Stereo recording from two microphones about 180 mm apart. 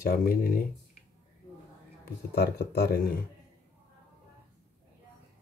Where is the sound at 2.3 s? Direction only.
60° left (ahead or behind).